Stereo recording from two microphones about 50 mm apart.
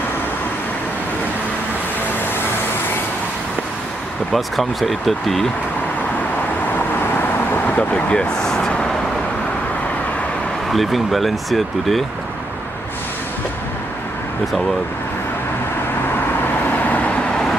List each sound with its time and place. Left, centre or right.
4.3 s speech: centre
7.5 s vehicle: left
7.9 s speech: centre
10.7 s speech: centre
16.7 s vehicle: left